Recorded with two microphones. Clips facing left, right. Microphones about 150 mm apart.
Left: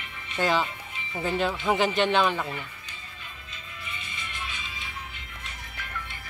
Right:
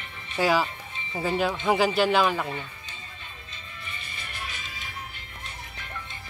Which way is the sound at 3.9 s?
40° right (ahead or behind).